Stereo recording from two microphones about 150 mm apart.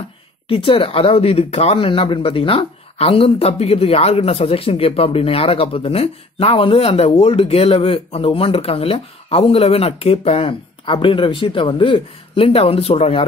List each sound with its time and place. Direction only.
0.5 s speech: 35° left (ahead or behind)